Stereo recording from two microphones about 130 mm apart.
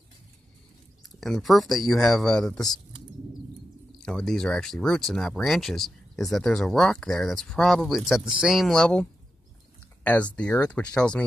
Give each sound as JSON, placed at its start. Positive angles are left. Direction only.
{"t": 1.2, "sound": "speech", "side_deg": 0}
{"t": 4.0, "sound": "speech", "side_deg": 5}
{"t": 10.0, "sound": "speech", "side_deg": 10}